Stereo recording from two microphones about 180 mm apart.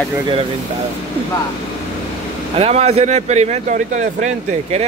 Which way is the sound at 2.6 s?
35° right (ahead or behind).